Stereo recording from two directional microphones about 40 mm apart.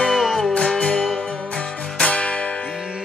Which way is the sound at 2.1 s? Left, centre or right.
Left.